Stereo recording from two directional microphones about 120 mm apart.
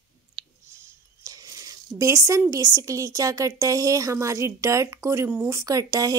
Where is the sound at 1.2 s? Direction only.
30° right (ahead or behind).